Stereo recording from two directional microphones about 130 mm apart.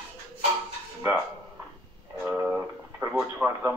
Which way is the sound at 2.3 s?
10° right (ahead or behind).